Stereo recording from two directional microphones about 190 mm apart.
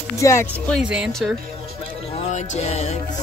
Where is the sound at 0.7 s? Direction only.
5° right (ahead or behind).